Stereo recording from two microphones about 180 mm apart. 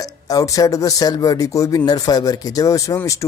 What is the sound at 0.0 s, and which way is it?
Speech, 20° left (ahead or behind).